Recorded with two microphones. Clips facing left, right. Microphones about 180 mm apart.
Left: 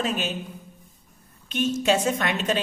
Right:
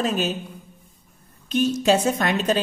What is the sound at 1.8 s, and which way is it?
Speech, 40° right (ahead or behind).